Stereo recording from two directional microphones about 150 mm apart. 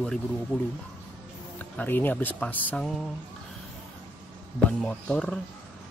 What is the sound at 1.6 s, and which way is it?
Speech, 10° left (ahead or behind).